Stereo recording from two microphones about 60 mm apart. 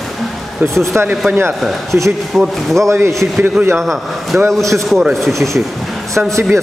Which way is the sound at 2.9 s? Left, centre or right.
Right.